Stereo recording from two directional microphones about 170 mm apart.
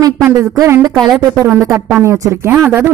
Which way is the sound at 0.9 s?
Centre (ahead or behind).